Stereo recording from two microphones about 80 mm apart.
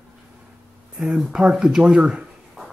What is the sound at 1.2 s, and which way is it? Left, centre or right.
Speech, centre.